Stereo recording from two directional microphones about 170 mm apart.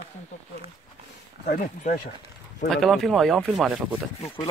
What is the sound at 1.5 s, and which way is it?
Speech, 50° left (ahead or behind).